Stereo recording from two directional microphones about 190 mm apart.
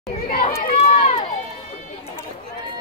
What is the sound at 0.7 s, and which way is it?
Run, 35° left (ahead or behind).